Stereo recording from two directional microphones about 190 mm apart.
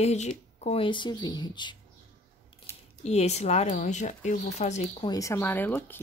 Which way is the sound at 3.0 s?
35° left (ahead or behind).